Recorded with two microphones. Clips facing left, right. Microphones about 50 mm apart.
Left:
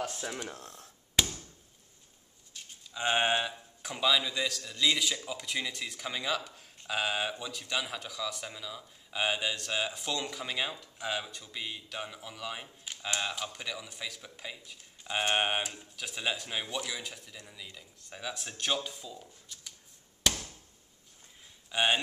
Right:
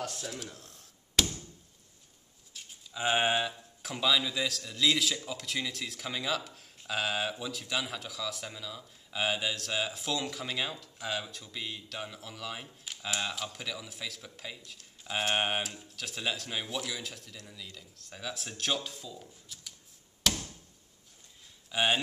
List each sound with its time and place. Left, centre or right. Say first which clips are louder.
0.0 s speech: left 2 dB; centre
0.5 s speech: left 5 dB; left
1.1 s a sound: even; centre
2.5 s a sound: even; centre
3.8 s a man's voice: even; centre
20.2 s chop: even; centre
21.6 s speech: even; centre